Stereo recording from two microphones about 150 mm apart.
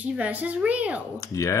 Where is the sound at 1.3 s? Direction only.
20° left (ahead or behind).